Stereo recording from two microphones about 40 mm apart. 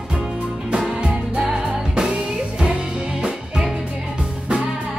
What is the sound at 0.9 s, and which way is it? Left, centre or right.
Music, right.